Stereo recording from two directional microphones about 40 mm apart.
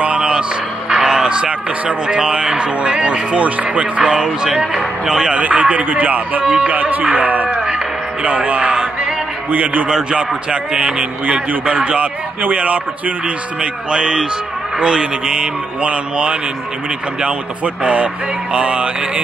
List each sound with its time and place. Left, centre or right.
0.2 s a sound: right
2.0 s a man's voice: right
4.1 s a man's voice: right
5.4 s speech: right
5.9 s speech: right
9.5 s speech: right
9.8 s a man's voice: right
13.6 s a man's voice: right
17.8 s a man's voice: right